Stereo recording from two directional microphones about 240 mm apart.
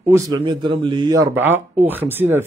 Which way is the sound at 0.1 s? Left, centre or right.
Centre.